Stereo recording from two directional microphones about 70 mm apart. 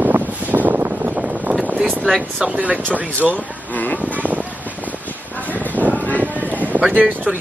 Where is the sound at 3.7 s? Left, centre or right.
Left.